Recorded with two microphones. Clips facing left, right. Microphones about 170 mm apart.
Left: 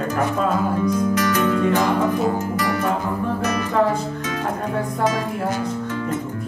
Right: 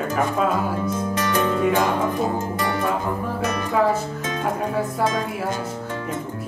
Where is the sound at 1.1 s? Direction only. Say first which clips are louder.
Left 2 dB; 25° right (ahead or behind).